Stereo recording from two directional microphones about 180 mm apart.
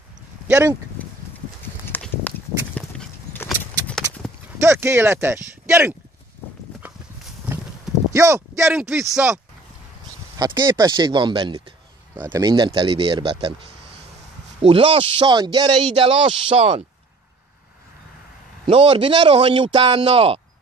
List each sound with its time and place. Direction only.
0.5 s a man's voice: 15° right (ahead or behind)
1.0 s horse: 10° left (ahead or behind)
1.9 s a sound: 10° left (ahead or behind)
3.8 s clip-clop: 5° left (ahead or behind)
4.6 s speech: 15° right (ahead or behind)
7.4 s a sound: 10° right (ahead or behind)
8.7 s a man's voice: 15° right (ahead or behind)
10.4 s speech: 25° right (ahead or behind)
18.7 s speech: 30° right (ahead or behind)